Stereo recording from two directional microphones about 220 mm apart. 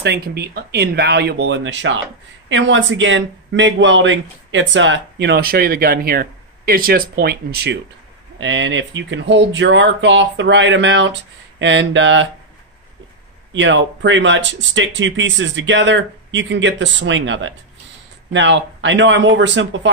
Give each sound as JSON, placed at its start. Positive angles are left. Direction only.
{"t": 0.0, "sound": "speech", "side_deg": -50}
{"t": 13.5, "sound": "speech", "side_deg": -55}